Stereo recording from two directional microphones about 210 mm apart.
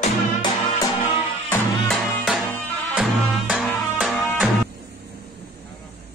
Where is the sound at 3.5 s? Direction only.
5° right (ahead or behind).